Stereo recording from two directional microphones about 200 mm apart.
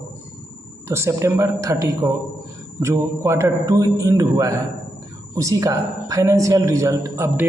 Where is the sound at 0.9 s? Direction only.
15° right (ahead or behind).